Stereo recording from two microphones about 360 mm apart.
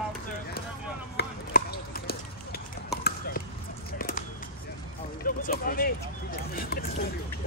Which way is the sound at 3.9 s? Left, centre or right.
Left.